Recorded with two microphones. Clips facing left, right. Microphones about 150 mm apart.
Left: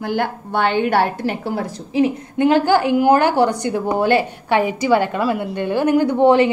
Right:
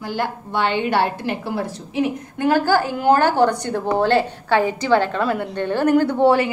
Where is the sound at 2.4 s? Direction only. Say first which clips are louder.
Left 3 dB; 20° left (ahead or behind).